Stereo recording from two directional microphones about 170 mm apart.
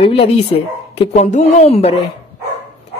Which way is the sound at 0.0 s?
35° left (ahead or behind).